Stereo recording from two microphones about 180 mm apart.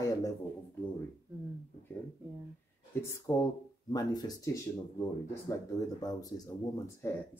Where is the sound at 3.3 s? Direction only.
15° left (ahead or behind).